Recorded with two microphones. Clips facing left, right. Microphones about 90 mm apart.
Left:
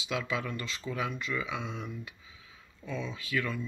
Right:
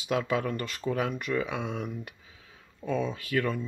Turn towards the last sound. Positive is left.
turn(degrees=-50)  # may be behind; listen again after turning